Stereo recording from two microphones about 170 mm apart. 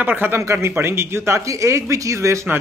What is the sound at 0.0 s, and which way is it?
A man's voice, 10° right (ahead or behind).